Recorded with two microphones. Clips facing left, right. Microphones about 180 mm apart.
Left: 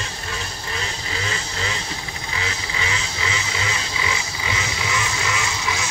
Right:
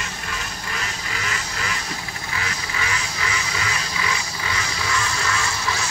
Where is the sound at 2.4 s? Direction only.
25° left (ahead or behind).